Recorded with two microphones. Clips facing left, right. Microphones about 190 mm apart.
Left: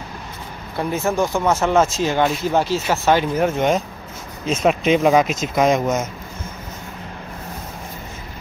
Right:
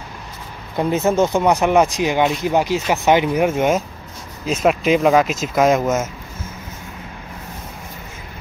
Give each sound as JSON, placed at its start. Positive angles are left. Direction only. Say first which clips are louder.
{"t": 0.7, "sound": "speech", "louder": "right 4 dB", "side_deg": -20}